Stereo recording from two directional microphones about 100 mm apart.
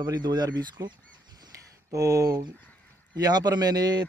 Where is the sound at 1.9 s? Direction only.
35° right (ahead or behind).